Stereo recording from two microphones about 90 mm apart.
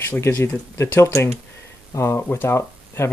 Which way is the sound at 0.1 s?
30° left (ahead or behind).